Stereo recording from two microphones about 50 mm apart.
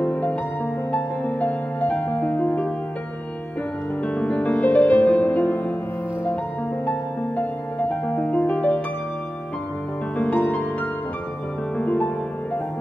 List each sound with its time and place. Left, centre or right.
0.0 s music: left
4.0 s music: left
8.1 s music: left
10.1 s music: left
11.8 s music: left